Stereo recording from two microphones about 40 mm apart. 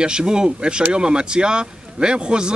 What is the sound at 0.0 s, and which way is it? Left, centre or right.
Speech, right.